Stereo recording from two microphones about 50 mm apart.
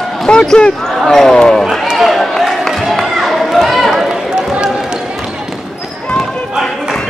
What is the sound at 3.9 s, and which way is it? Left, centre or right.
Run, centre.